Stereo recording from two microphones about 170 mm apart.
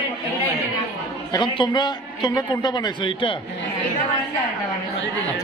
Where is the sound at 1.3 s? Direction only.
30° left (ahead or behind).